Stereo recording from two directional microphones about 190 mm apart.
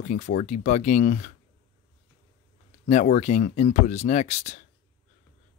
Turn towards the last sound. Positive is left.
turn(degrees=35)  # may be behind; listen again after turning